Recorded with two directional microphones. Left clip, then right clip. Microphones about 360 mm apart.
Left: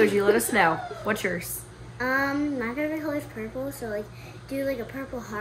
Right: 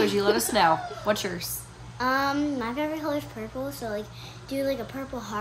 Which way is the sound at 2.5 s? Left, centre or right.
Centre.